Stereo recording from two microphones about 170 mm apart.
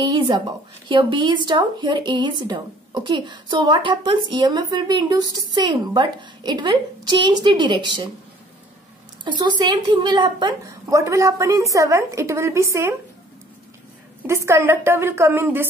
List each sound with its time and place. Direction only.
0.0 s speech: 25° right (ahead or behind)
9.2 s speech: 25° right (ahead or behind)
14.2 s a woman's voice: 15° right (ahead or behind)